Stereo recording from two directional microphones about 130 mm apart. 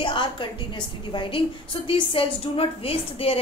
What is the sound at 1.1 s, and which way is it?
A woman's voice, 45° left (ahead or behind).